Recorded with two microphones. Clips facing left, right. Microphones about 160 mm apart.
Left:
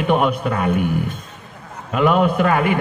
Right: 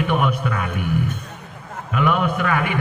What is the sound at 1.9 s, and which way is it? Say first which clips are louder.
Speech: left 4 dB; 30° left (ahead or behind).